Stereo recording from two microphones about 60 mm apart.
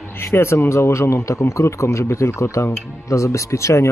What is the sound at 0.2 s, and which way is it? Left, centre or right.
Speech, left.